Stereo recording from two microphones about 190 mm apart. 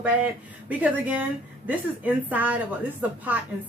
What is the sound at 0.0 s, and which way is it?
Speech, 5° right (ahead or behind).